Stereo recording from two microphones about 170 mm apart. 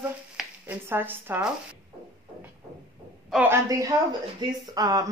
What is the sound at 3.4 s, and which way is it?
Speech, 20° right (ahead or behind).